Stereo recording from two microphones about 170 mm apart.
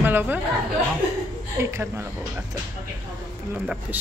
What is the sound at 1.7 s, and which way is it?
Speech, 15° right (ahead or behind).